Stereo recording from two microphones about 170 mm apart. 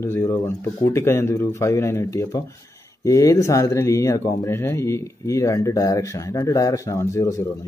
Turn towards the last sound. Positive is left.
turn(degrees=15)  # may be behind; listen again after turning